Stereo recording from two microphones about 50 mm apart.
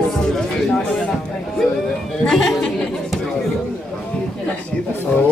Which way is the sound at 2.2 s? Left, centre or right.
Centre.